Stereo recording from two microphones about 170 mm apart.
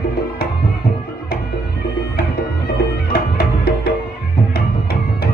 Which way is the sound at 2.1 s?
70° left (ahead or behind).